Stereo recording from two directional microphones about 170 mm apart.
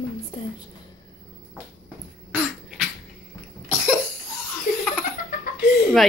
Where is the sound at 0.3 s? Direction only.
30° left (ahead or behind).